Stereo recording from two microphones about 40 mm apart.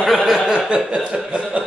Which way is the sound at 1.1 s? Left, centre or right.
Right.